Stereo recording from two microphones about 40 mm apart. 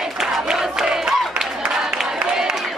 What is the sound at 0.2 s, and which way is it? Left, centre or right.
Crowd, centre.